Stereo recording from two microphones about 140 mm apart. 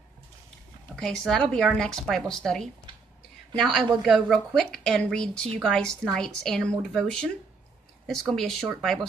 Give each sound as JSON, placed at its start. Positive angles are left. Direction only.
{"t": 0.8, "sound": "speech", "side_deg": 5}